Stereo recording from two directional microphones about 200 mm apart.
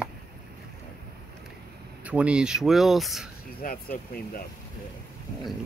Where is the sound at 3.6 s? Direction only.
45° left (ahead or behind).